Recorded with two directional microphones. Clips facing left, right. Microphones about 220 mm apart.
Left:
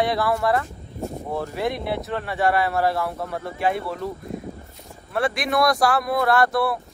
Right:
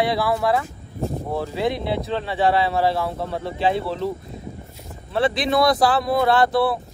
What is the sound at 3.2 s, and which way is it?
Speech, 25° right (ahead or behind).